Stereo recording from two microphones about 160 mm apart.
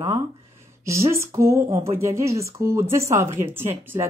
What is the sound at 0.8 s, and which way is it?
Speech, 15° right (ahead or behind).